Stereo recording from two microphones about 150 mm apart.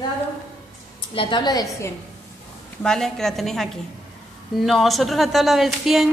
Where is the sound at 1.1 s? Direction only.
30° left (ahead or behind).